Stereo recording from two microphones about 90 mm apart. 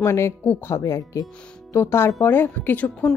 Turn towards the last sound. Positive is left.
turn(degrees=20)  # may be behind; listen again after turning